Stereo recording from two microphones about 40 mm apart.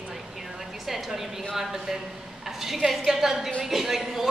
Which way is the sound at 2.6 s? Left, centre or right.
Centre.